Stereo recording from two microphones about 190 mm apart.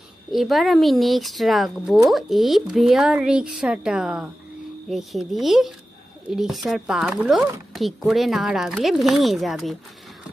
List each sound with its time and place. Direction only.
0.3 s speech: centre (ahead or behind)